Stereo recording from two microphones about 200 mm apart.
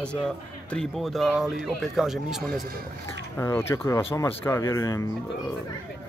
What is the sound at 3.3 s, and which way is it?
Speech, 10° left (ahead or behind).